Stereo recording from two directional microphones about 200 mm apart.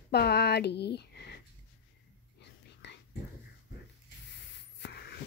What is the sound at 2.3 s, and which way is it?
Whispering, 60° left (ahead or behind).